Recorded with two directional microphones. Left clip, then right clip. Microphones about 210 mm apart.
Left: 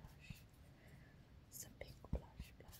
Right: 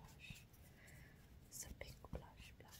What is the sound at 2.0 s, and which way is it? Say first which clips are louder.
Whispering: left 4 dB; 5° right (ahead or behind).